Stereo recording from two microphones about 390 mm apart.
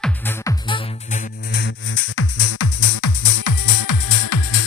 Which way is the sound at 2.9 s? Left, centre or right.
Left.